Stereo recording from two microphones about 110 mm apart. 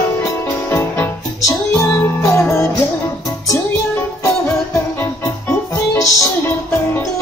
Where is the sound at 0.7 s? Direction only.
20° left (ahead or behind).